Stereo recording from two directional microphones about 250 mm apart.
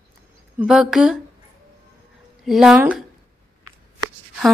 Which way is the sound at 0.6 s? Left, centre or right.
Centre.